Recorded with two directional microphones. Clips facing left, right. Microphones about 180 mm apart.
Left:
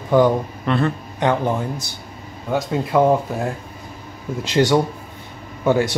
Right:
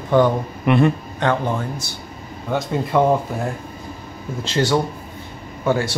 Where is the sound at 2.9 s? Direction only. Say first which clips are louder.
Left 1 dB; 5° left (ahead or behind).